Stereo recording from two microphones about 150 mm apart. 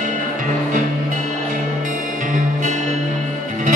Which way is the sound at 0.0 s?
60° right (ahead or behind).